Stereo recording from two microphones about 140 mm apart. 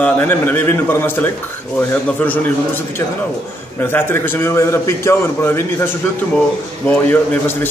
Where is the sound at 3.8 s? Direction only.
15° left (ahead or behind).